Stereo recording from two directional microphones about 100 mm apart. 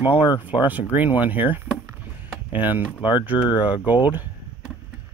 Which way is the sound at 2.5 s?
20° right (ahead or behind).